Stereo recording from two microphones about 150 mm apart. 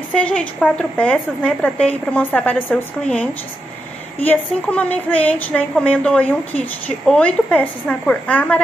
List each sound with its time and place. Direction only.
0.1 s a woman's voice: 10° left (ahead or behind)